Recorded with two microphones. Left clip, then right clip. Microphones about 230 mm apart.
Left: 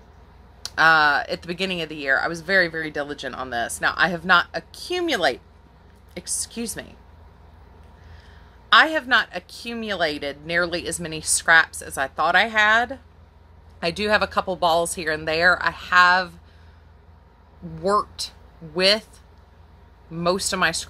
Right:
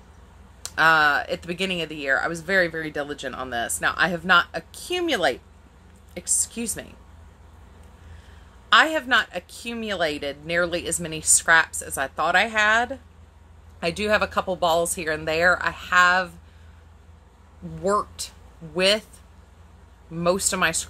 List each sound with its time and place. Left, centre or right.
0.6 s speech: centre
8.6 s speech: centre
17.8 s speech: centre
20.1 s speech: centre